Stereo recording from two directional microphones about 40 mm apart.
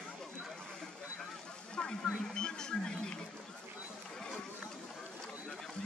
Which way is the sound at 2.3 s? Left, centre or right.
Centre.